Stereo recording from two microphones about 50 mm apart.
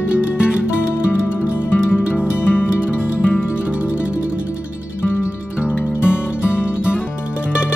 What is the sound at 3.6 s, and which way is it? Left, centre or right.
Music, right.